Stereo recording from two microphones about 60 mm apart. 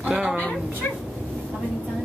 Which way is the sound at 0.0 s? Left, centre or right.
Centre.